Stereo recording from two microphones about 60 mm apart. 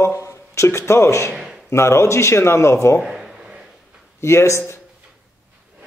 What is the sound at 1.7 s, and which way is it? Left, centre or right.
Speech, left.